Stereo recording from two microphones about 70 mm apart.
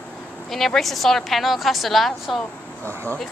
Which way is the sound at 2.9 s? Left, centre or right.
Right.